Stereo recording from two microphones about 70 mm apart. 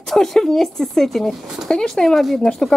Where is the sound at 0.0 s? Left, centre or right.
Centre.